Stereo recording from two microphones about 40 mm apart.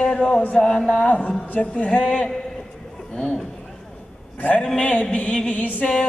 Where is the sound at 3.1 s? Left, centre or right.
Left.